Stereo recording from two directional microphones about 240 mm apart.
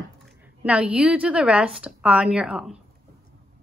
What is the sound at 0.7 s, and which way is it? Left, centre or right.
A woman's voice, centre.